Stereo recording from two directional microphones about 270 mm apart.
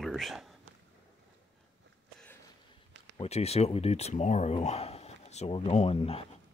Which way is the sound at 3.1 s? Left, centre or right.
Left.